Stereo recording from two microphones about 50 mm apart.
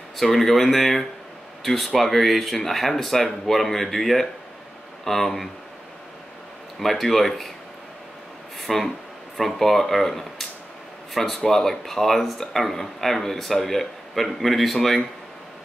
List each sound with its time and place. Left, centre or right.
0.2 s speech: centre
6.8 s speech: centre
8.5 s speech: centre